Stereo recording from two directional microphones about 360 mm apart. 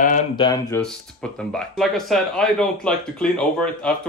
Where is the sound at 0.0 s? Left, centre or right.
Centre.